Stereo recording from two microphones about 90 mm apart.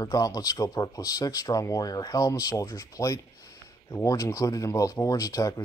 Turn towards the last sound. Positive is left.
turn(degrees=40)  # may be behind; listen again after turning